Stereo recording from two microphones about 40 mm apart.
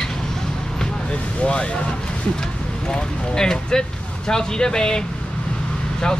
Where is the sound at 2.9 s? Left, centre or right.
Centre.